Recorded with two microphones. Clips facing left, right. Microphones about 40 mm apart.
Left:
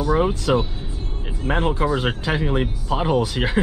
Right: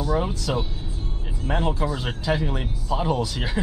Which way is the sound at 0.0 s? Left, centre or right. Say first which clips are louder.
Left 5 dB; left.